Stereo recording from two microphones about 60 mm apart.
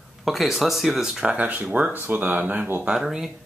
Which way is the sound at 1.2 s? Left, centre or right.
Centre.